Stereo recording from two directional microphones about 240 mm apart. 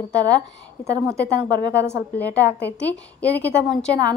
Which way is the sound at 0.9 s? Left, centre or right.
Centre.